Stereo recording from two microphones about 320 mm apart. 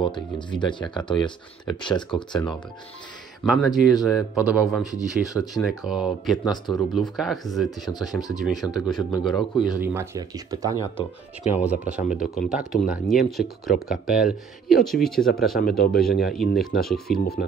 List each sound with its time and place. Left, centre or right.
0.0 s speech: centre
3.4 s speech: centre
7.8 s speech: centre
8.4 s speech: centre
10.8 s speech: centre
11.6 s speech: centre